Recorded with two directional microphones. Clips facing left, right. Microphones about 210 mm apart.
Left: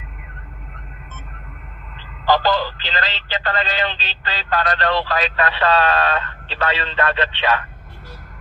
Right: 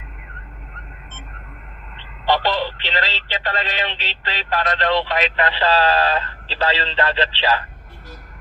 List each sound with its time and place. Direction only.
2.2 s speech: 25° right (ahead or behind)